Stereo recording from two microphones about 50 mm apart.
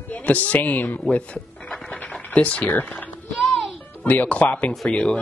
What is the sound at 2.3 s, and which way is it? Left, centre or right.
Speech, left.